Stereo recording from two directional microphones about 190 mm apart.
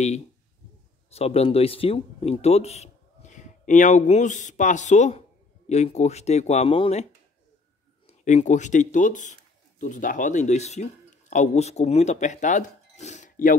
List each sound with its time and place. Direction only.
1.1 s speech: 35° left (ahead or behind)
8.1 s speech: 35° left (ahead or behind)